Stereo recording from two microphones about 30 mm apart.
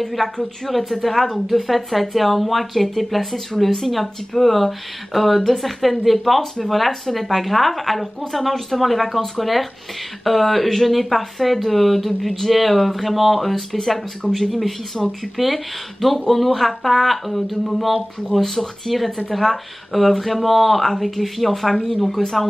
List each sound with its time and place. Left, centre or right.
0.0 s speech: centre
13.7 s speech: centre
15.0 s speech: centre